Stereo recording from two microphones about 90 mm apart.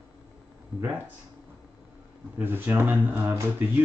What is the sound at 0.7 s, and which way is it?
Speech, 25° right (ahead or behind).